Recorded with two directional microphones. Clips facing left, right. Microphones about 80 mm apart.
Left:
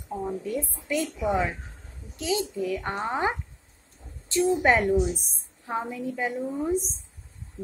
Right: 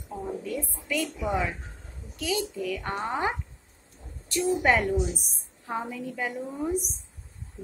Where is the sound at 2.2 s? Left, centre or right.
Left.